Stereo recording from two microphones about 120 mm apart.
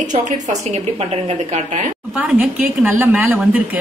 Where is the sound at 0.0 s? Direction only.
90° right.